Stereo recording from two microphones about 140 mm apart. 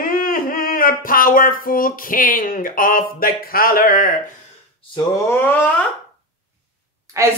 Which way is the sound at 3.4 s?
90° left.